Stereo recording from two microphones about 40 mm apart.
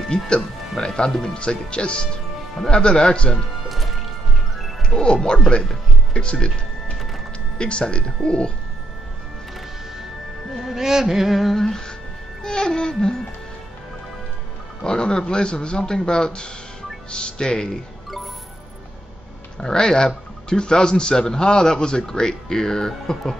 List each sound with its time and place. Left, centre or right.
0.1 s a man's voice: centre
3.6 s music: centre
4.8 s speech: left
7.5 s speech: left
10.6 s carnatic music: centre
11.5 s a man's voice: centre
14.8 s speech: centre
19.6 s a man's voice: centre